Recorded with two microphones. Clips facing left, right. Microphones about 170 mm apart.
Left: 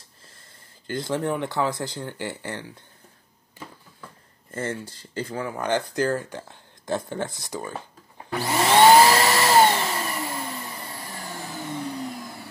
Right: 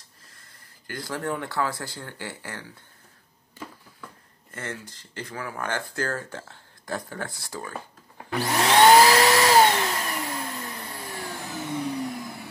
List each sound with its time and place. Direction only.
0.8 s speech: 25° left (ahead or behind)
4.5 s speech: 30° left (ahead or behind)
8.3 s vacuum cleaner: 5° left (ahead or behind)